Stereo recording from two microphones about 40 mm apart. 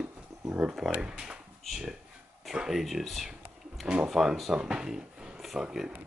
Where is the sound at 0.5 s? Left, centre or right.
Right.